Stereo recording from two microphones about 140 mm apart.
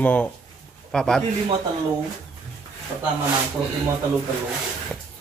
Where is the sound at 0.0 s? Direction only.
10° left (ahead or behind).